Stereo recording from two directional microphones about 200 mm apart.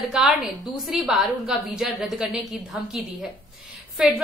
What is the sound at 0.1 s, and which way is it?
A woman's voice, centre (ahead or behind).